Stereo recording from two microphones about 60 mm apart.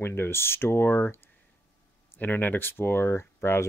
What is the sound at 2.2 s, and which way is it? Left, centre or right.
Speech, left.